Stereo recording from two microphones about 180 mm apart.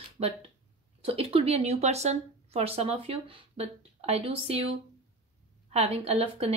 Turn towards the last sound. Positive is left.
turn(degrees=-35)  # may be behind; listen again after turning